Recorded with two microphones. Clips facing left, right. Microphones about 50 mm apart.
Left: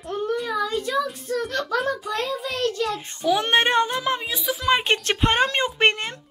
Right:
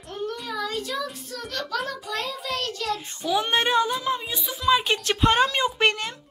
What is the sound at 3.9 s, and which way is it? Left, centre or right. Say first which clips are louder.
Music: left 2 dB; left.